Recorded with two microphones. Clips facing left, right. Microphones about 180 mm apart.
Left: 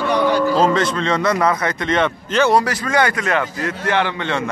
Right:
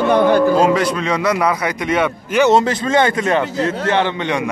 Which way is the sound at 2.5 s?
25° right (ahead or behind).